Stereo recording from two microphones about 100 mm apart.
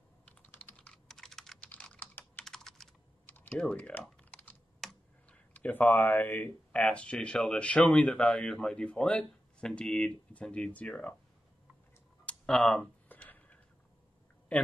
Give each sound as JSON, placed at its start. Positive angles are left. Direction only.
{"t": 0.3, "sound": "computer keyboard", "side_deg": 15}
{"t": 1.7, "sound": "typing", "side_deg": 15}
{"t": 2.4, "sound": "computer keyboard", "side_deg": 5}
{"t": 3.3, "sound": "typing", "side_deg": 15}
{"t": 4.8, "sound": "computer keyboard", "side_deg": 0}
{"t": 5.5, "sound": "speech", "side_deg": 15}
{"t": 12.3, "sound": "a sound", "side_deg": 10}